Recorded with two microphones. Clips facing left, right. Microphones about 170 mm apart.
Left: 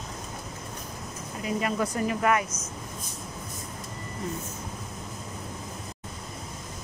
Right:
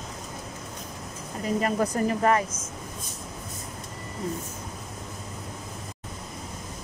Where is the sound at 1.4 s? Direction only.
40° right (ahead or behind).